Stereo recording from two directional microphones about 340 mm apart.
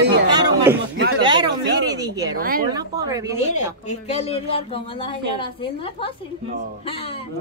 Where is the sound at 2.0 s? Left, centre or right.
Centre.